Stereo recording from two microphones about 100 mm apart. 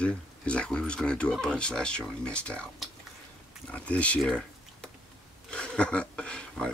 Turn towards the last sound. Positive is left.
turn(degrees=10)  # may be behind; listen again after turning